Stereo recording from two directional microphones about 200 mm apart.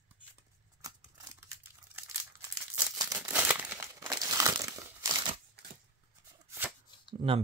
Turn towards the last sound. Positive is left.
turn(degrees=-25)  # may be behind; listen again after turning